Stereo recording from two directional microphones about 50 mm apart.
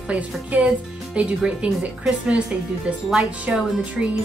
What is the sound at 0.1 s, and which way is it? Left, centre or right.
Speech, right.